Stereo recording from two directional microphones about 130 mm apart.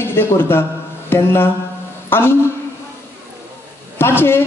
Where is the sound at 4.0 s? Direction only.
15° left (ahead or behind).